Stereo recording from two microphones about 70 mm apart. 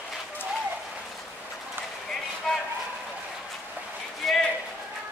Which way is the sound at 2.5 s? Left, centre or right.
Centre.